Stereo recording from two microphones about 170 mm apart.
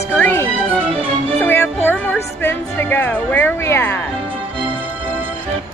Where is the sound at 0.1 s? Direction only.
10° left (ahead or behind).